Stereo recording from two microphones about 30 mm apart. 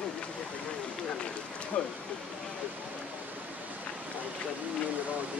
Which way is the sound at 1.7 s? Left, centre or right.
Left.